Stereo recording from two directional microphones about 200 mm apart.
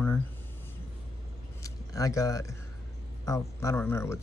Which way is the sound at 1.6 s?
15° left (ahead or behind).